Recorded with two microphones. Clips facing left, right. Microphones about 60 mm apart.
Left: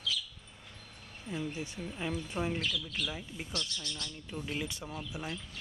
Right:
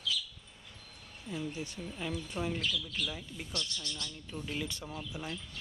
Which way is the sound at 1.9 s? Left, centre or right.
Centre.